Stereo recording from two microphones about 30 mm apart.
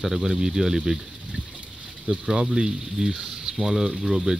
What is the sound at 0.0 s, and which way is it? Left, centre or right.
Speech, centre.